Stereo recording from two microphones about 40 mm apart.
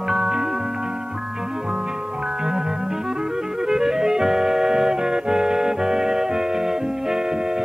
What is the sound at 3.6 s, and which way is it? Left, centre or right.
Music, centre.